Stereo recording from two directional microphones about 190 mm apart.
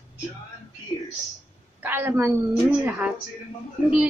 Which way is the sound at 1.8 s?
10° right (ahead or behind).